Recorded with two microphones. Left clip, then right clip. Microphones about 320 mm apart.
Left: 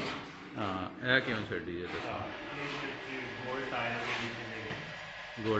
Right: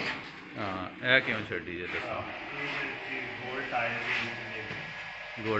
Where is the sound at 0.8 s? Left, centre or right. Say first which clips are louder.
Right 5 dB; centre.